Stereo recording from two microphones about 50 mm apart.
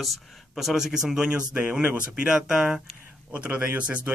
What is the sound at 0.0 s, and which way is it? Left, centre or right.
Speech, centre.